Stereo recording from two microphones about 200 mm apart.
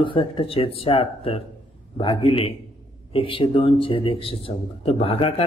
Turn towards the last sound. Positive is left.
turn(degrees=30)  # may be behind; listen again after turning